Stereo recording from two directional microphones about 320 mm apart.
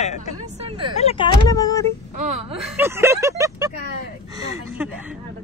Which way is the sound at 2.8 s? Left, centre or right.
Centre.